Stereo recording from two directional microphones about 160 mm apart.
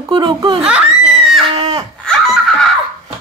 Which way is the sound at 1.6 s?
25° right (ahead or behind).